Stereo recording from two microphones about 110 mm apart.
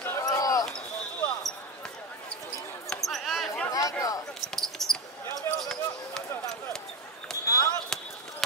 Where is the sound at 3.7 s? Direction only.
30° left (ahead or behind).